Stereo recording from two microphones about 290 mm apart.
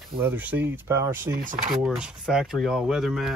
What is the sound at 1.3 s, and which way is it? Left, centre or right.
Speech, right.